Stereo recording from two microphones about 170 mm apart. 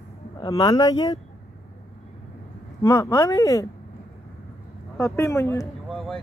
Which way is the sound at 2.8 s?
15° left (ahead or behind).